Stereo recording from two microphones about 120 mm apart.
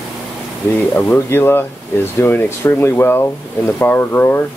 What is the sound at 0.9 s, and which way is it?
Speech, 15° left (ahead or behind).